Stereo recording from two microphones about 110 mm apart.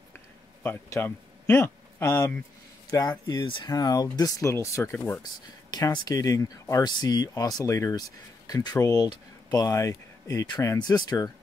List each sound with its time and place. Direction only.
0.7 s a man's voice: 25° left (ahead or behind)
2.9 s speech: 35° left (ahead or behind); by 5.2 s 15° left (ahead or behind)
5.7 s speech: 35° left (ahead or behind)